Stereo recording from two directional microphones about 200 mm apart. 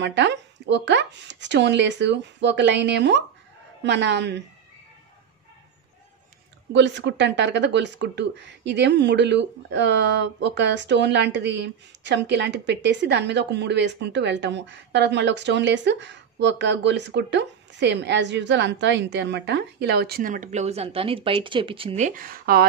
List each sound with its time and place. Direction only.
0.0 s speech: 60° right (ahead or behind)
6.7 s speech: 60° right (ahead or behind)